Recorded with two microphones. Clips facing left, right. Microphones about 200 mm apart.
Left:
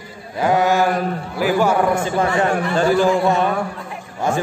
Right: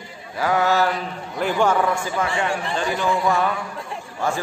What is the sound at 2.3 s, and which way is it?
Speech, 50° left (ahead or behind).